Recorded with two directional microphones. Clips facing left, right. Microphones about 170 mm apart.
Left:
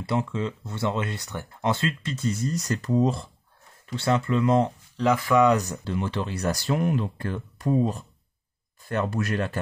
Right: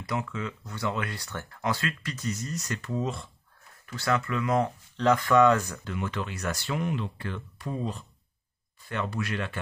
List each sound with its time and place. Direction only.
0.0 s speech: 25° left (ahead or behind)
3.8 s speech: 25° left (ahead or behind)
4.9 s speech: 10° left (ahead or behind)
5.9 s speech: 30° left (ahead or behind)